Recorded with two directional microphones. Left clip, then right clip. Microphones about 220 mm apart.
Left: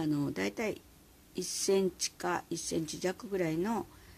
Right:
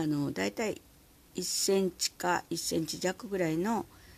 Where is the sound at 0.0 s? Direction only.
15° right (ahead or behind).